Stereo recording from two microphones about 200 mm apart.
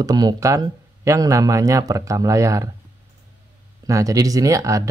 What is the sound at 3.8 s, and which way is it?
Speech, 15° right (ahead or behind).